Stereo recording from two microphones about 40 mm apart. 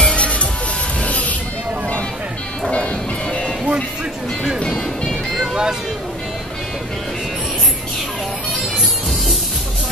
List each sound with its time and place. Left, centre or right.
0.0 s music: left
1.0 s vehicle: left
2.7 s music: left
4.6 s music: left
5.3 s music: centre